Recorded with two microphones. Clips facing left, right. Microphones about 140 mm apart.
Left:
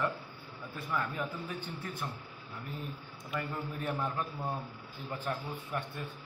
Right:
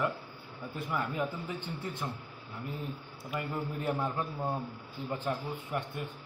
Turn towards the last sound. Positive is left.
turn(degrees=-20)  # may be behind; listen again after turning